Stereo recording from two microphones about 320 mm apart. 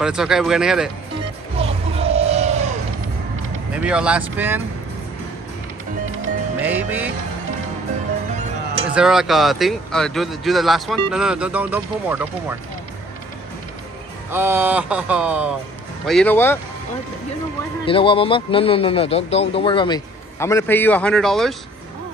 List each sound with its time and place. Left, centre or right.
0.0 s speech: centre
1.6 s a sound: centre
3.7 s speech: centre
6.6 s speech: centre
8.9 s speech: centre
14.3 s speech: centre
17.8 s speech: centre